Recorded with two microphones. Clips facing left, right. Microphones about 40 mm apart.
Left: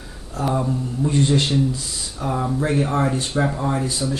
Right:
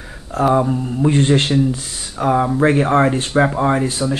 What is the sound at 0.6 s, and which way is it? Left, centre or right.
Speech, right.